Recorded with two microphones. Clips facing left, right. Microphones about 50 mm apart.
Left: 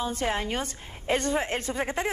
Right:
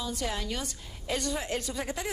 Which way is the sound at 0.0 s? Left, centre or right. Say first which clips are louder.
Left 5 dB; left.